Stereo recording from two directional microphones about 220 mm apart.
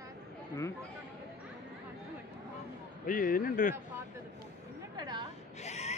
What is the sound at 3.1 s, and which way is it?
Speech, 40° left (ahead or behind).